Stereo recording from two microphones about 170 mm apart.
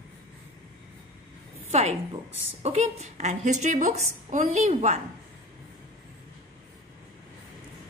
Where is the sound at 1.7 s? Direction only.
35° right (ahead or behind).